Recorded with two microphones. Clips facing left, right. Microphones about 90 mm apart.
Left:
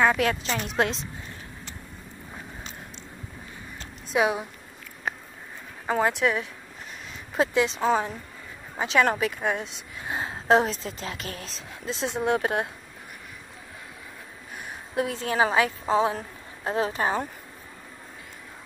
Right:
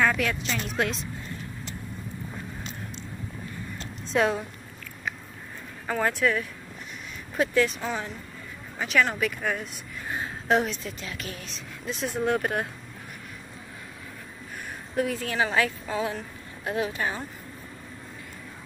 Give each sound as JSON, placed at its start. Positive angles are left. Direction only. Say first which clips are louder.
{"t": 0.2, "sound": "a woman's voice", "louder": "left 3 dB", "side_deg": 35}
{"t": 4.0, "sound": "speech", "louder": "even", "side_deg": 10}
{"t": 5.9, "sound": "a woman's voice", "louder": "left 2 dB", "side_deg": 20}
{"t": 7.5, "sound": "a woman's voice", "louder": "left 4 dB", "side_deg": 25}
{"t": 9.4, "sound": "a woman's voice", "louder": "left 2 dB", "side_deg": 20}
{"t": 12.2, "sound": "a woman's voice", "louder": "left 1 dB", "side_deg": 20}
{"t": 15.0, "sound": "a woman's voice", "louder": "left 2 dB", "side_deg": 25}